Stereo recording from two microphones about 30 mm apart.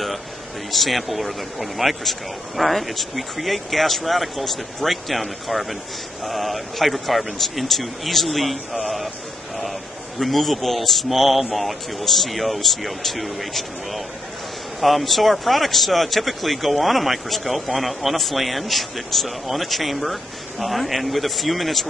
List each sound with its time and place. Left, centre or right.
0.7 s speech: centre
8.8 s a sound: centre
10.1 s speech: centre